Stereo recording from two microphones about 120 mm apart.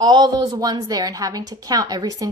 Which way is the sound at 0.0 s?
40° right (ahead or behind).